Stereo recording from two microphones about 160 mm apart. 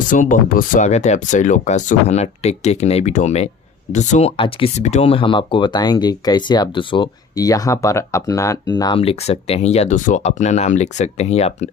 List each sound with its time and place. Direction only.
0.1 s speech: 55° left (ahead or behind)